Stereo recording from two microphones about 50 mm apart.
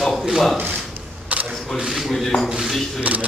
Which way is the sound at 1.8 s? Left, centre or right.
Centre.